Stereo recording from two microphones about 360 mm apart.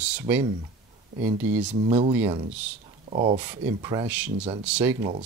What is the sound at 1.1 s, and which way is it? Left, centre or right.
Speech, right.